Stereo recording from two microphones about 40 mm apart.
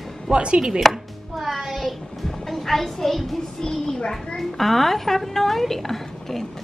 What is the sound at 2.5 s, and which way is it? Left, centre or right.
Speech, centre.